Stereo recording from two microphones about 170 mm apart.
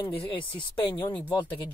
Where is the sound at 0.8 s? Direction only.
10° left (ahead or behind).